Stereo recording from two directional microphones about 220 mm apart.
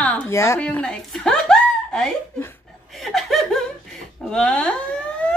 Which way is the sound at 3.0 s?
Centre (ahead or behind).